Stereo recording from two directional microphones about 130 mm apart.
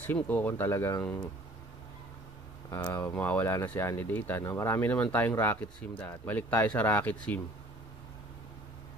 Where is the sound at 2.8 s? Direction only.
10° left (ahead or behind).